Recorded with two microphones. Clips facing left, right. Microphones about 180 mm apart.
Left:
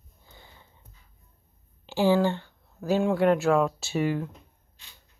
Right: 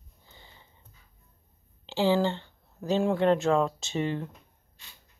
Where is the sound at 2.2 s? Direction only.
10° left (ahead or behind).